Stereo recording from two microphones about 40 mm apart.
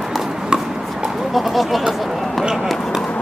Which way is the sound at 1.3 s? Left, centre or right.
Centre.